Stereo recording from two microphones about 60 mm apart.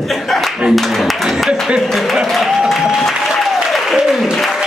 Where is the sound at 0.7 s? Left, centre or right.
Centre.